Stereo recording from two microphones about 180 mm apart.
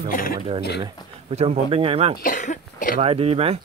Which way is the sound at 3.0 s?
35° right (ahead or behind).